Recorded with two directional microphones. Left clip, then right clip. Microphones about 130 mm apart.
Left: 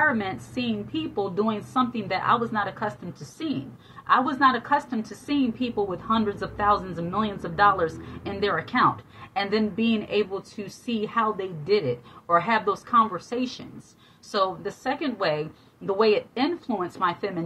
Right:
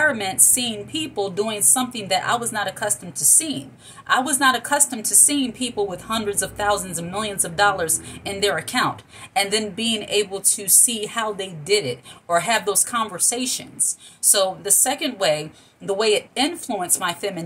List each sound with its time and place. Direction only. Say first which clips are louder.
0.0 s a woman's voice: right 4 dB; 45° right (ahead or behind)